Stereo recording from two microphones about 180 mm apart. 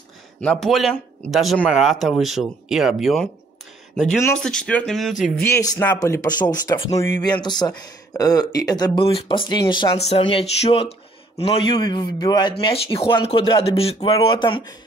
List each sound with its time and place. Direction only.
0.4 s speech: 5° left (ahead or behind)
5.4 s speech: 15° left (ahead or behind)